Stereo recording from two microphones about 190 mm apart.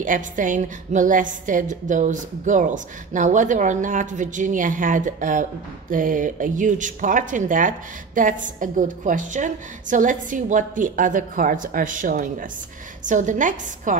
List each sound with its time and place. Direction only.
0.0 s a woman's voice: 45° right (ahead or behind)